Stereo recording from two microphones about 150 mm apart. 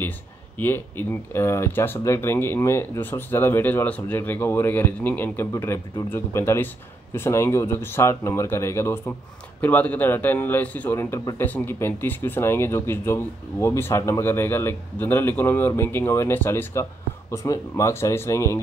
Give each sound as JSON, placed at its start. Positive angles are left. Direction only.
{"t": 0.6, "sound": "a man's voice", "side_deg": 15}